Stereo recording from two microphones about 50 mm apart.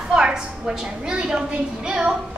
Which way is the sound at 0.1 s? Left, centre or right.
Centre.